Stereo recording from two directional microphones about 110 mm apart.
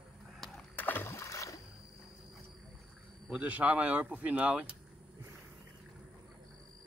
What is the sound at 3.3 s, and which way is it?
Speech, 15° right (ahead or behind).